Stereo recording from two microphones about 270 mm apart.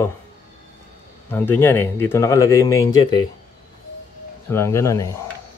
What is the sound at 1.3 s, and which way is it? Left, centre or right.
Speech, centre.